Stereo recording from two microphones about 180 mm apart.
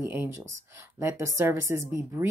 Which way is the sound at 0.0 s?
15° right (ahead or behind).